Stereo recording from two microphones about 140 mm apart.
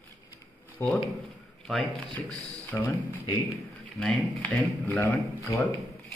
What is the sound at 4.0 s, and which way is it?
Speech, 5° left (ahead or behind).